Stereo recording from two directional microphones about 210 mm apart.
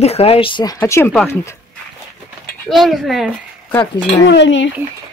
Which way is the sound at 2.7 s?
Centre (ahead or behind).